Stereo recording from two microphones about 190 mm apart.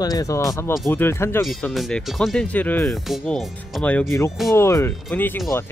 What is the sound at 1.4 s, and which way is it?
Speech, centre (ahead or behind).